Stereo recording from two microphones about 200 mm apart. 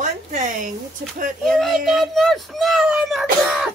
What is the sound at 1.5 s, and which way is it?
Speech, centre (ahead or behind).